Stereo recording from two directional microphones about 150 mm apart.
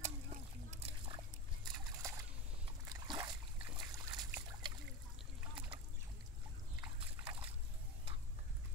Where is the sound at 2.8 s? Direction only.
25° right (ahead or behind).